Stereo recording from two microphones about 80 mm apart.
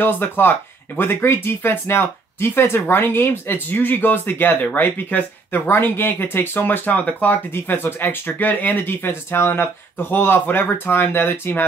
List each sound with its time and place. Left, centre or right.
0.0 s speech: left